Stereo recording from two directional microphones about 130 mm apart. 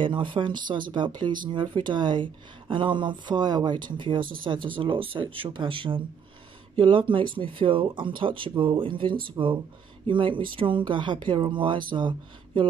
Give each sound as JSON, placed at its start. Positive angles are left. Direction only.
{"t": 0.0, "sound": "speech", "side_deg": -40}